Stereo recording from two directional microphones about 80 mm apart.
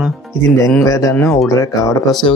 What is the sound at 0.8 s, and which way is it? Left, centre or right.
Speech, left.